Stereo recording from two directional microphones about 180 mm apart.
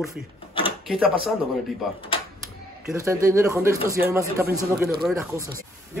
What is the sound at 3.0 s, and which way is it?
Speech, 15° right (ahead or behind).